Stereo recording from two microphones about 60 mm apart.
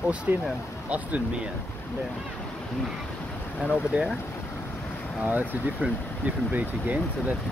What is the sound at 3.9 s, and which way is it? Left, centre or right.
Speech, right.